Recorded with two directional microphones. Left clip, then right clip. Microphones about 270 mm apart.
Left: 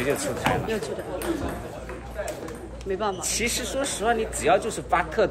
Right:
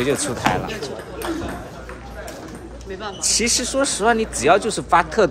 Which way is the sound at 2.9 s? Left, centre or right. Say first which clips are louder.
Left 4 dB; left.